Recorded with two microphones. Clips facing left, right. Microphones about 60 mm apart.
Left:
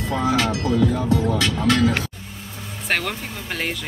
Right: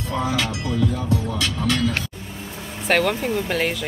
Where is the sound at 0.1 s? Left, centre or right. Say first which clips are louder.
Left 3 dB; left.